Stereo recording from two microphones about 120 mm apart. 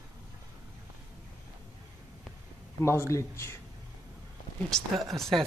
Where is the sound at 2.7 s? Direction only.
20° left (ahead or behind).